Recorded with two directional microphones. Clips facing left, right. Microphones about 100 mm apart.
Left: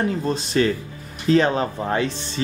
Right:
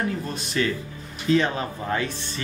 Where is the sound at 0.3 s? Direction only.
30° left (ahead or behind).